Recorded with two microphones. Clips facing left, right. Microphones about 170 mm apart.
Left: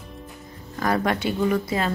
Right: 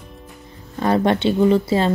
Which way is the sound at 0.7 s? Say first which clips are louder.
Right 5 dB; 25° right (ahead or behind).